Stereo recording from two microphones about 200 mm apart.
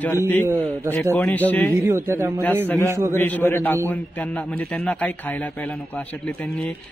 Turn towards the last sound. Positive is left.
turn(degrees=5)  # may be behind; listen again after turning